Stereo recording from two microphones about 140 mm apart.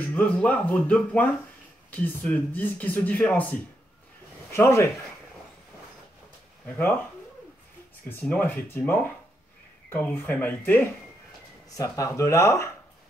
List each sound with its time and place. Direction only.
0.0 s speech: 10° left (ahead or behind)
8.1 s speech: 10° left (ahead or behind)
11.7 s speech: 25° left (ahead or behind)